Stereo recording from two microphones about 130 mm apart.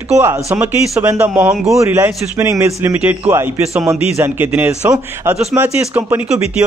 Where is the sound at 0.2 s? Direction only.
20° right (ahead or behind).